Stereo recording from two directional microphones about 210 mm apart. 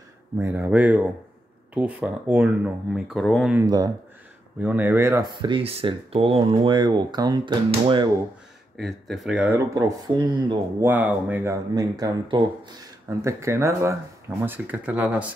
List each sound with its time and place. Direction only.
0.4 s speech: 10° right (ahead or behind)
3.5 s speech: 20° right (ahead or behind)
8.7 s speech: centre (ahead or behind)
9.8 s speech: 20° right (ahead or behind)
10.9 s speech: 10° right (ahead or behind)
11.7 s speech: 20° right (ahead or behind)